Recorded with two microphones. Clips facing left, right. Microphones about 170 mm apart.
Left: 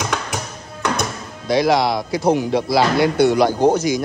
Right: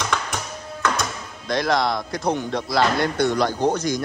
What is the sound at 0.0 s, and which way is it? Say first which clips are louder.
Music: left 2 dB; 10° left (ahead or behind).